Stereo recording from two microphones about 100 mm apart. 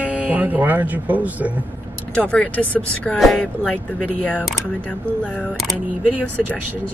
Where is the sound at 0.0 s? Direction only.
15° right (ahead or behind).